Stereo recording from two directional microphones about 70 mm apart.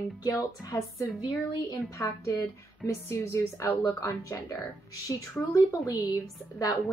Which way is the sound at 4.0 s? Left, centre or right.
Left.